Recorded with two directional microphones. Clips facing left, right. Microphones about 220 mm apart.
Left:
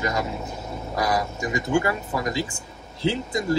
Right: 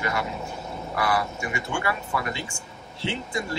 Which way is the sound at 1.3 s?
35° left (ahead or behind).